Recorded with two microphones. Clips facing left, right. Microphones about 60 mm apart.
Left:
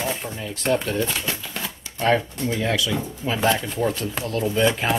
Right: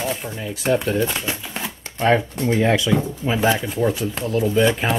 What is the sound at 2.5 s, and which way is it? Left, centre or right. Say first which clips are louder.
Speech: right 6 dB; right.